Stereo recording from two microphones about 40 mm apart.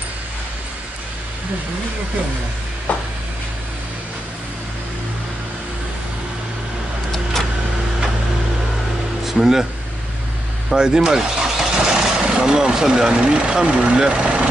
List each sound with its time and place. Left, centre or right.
2.9 s a sound: left
9.2 s speech: centre
10.7 s speech: centre
14.2 s vehicle: right